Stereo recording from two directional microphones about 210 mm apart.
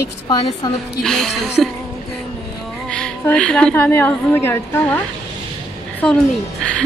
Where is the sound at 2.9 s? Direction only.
5° left (ahead or behind).